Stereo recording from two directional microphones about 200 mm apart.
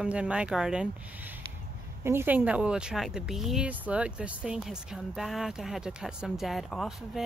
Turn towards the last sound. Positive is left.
turn(degrees=0)  # may be behind; listen again after turning